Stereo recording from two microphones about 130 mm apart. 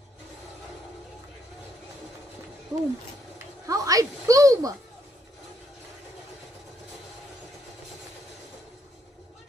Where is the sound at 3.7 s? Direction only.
25° right (ahead or behind).